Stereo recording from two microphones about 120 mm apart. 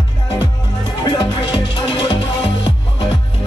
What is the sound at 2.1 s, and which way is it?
Music, 45° left (ahead or behind).